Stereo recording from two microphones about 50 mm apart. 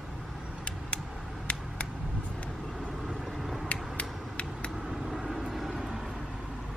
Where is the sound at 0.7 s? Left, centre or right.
Left.